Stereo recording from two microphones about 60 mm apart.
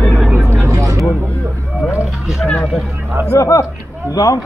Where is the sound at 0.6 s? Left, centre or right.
Right.